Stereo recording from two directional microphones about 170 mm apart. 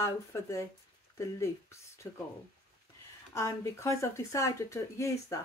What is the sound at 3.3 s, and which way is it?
Speech, 15° left (ahead or behind).